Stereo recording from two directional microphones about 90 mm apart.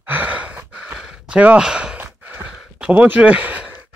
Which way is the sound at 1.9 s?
15° right (ahead or behind).